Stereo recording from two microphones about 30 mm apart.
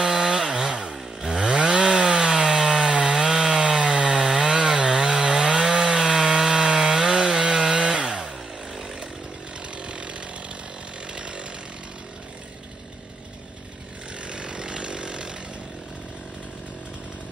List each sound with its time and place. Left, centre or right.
0.0 s chainsaw: centre
0.7 s chainsaw: right
2.9 s chainsaw: right
3.2 s wood: centre
3.6 s chainsaw: right; by 5.2 s centre
5.3 s wood: right
7.7 s chainsaw: right
9.8 s chainsaw: right
11.1 s chainsaw: right
14.2 s chainsaw: right